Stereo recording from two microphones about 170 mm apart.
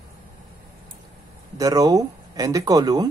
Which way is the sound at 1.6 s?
20° right (ahead or behind).